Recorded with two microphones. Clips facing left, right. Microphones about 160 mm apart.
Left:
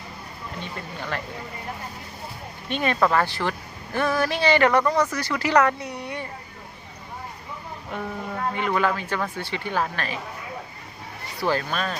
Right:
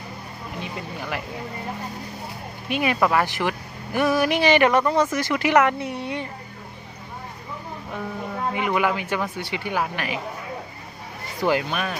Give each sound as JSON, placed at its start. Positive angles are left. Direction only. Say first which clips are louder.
{"t": 0.6, "sound": "speech", "louder": "right 3 dB", "side_deg": -10}
{"t": 2.7, "sound": "speech", "louder": "right 1 dB", "side_deg": -10}
{"t": 7.9, "sound": "speech", "louder": "even", "side_deg": -10}
{"t": 11.3, "sound": "speech", "louder": "right 2 dB", "side_deg": -15}